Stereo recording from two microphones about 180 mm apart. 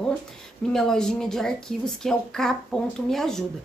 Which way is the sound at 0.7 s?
Centre (ahead or behind).